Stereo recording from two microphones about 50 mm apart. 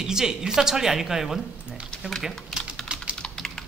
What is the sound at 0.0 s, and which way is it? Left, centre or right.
Speech, centre.